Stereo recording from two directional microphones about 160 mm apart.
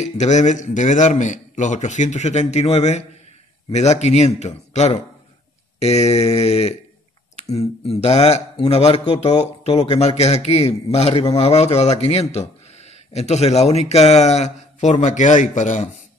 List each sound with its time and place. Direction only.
0.0 s a man's voice: 45° left (ahead or behind)